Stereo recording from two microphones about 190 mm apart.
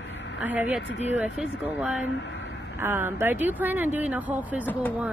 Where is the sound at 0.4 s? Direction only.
10° right (ahead or behind).